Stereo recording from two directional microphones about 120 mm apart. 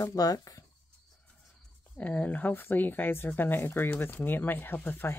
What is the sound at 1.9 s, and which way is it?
Speech, 10° left (ahead or behind).